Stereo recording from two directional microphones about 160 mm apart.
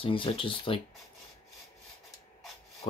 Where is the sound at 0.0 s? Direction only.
35° left (ahead or behind).